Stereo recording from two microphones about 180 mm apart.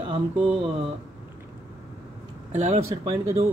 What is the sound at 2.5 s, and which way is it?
Speech, 40° right (ahead or behind).